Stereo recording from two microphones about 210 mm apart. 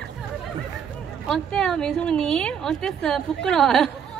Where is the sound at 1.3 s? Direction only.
5° left (ahead or behind).